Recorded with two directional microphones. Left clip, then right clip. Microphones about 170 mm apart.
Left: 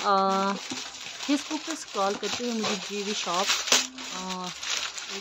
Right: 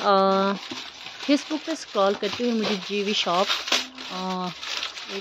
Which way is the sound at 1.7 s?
20° right (ahead or behind).